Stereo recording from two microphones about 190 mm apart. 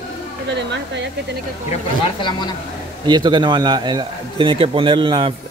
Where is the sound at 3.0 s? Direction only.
25° right (ahead or behind).